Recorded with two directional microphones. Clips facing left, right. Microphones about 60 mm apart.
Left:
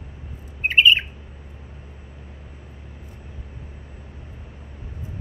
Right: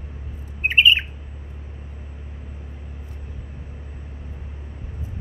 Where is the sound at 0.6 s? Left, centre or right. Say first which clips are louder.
Even; centre.